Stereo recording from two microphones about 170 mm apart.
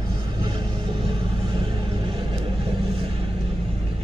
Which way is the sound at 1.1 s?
30° right (ahead or behind).